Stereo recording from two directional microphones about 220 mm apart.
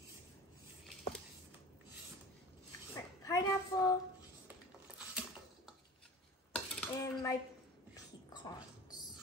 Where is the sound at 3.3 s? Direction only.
15° left (ahead or behind).